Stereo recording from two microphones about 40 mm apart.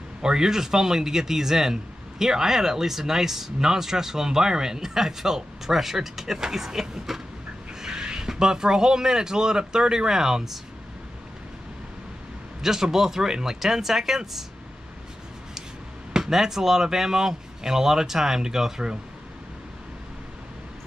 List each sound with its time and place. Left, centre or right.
0.2 s speech: centre
12.6 s speech: centre
16.1 s speech: centre